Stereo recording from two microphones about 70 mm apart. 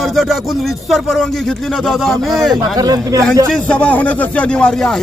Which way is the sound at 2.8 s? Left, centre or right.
Right.